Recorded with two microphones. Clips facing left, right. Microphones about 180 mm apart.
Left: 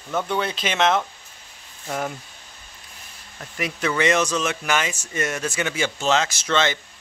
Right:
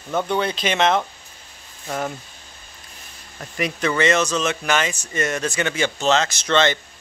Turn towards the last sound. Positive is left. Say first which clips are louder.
# right 3 dB
turn(degrees=5)  # may be behind; listen again after turning